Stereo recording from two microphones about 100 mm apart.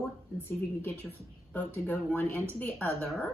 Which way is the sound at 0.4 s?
20° left (ahead or behind).